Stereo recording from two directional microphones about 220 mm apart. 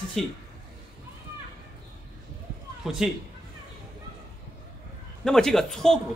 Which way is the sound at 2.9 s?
Centre (ahead or behind).